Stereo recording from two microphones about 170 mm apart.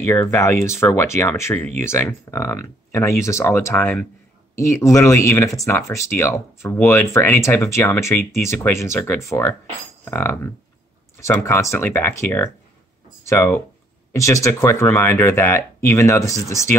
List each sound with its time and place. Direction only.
0.0 s speech: 15° left (ahead or behind)